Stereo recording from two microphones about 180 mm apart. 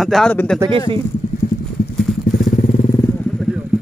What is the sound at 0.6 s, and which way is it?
Speech, 30° right (ahead or behind).